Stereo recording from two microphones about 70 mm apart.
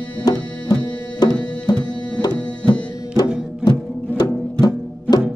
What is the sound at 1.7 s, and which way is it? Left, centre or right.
Tabla, left.